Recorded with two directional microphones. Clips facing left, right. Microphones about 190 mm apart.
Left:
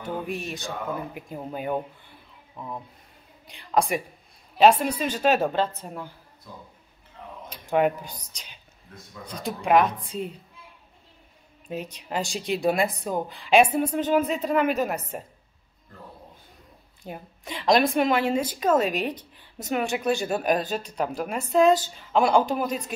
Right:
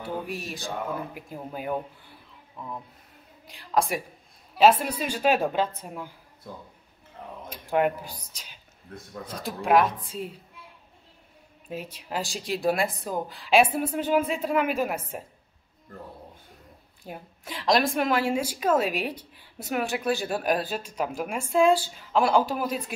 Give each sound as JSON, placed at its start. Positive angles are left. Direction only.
{"t": 0.0, "sound": "a woman's voice", "side_deg": -5}
{"t": 2.5, "sound": "speech", "side_deg": 15}
{"t": 3.4, "sound": "a woman's voice", "side_deg": 0}
{"t": 6.5, "sound": "speech", "side_deg": -55}
{"t": 7.5, "sound": "a woman's voice", "side_deg": -5}
{"t": 11.7, "sound": "a woman's voice", "side_deg": -5}
{"t": 17.0, "sound": "a woman's voice", "side_deg": 0}